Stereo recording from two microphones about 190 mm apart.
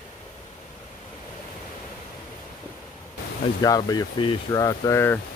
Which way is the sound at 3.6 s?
20° left (ahead or behind).